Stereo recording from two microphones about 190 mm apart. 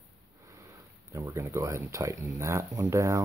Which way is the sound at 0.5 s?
15° right (ahead or behind).